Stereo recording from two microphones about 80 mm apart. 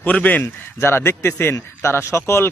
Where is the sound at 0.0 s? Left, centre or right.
Left.